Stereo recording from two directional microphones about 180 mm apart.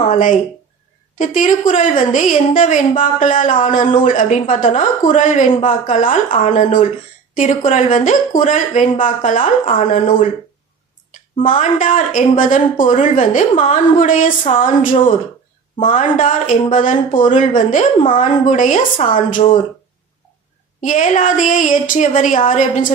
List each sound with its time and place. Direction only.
0.0 s a woman's voice: 45° left (ahead or behind)
11.4 s a woman's voice: 45° left (ahead or behind)
20.8 s a woman's voice: 45° left (ahead or behind)